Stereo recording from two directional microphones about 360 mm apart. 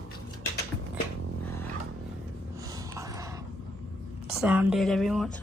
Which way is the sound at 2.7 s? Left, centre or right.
Centre.